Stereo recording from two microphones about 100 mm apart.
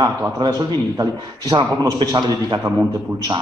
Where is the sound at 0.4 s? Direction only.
45° right (ahead or behind).